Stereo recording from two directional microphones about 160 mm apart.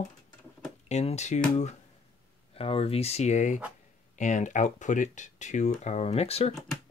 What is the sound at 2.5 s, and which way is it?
Speech, 35° left (ahead or behind).